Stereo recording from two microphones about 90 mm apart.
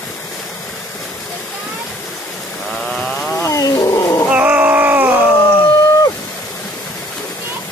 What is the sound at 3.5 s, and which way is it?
Roaring cats, 40° left (ahead or behind).